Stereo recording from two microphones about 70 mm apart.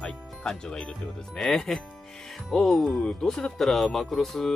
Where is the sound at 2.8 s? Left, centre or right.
Centre.